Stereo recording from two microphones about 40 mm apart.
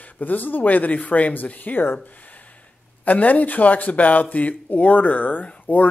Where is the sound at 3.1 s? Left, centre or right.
Left.